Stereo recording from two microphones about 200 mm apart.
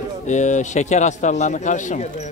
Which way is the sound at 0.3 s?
35° left (ahead or behind).